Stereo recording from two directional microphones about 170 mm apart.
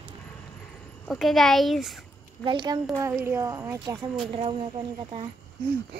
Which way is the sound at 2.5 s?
25° right (ahead or behind).